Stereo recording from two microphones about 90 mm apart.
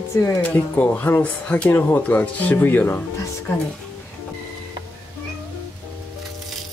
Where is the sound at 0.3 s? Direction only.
15° left (ahead or behind).